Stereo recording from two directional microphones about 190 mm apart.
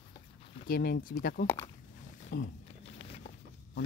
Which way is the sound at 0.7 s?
50° left (ahead or behind).